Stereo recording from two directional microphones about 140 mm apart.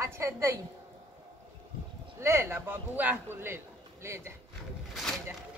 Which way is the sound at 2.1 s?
20° right (ahead or behind).